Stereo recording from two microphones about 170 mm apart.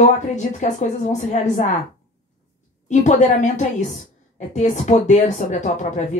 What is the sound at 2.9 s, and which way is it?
A woman's voice, 45° left (ahead or behind).